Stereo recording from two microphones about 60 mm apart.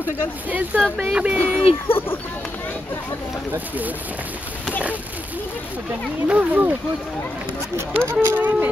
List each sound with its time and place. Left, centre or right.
0.5 s speech: right
1.9 s speech: left
3.5 s speech: right
6.2 s speech: right
7.7 s speech: right
8.4 s speech: right